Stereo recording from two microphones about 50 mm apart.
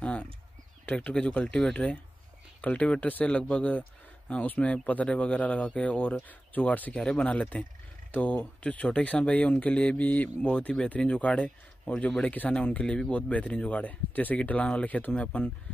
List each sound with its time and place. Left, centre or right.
0.0 s a sound: left
0.8 s speech: left
6.9 s speech: centre